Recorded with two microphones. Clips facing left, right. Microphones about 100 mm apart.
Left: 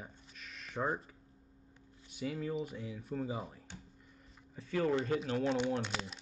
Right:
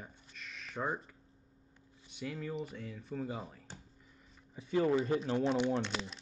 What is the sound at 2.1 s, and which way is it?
Speech, centre (ahead or behind).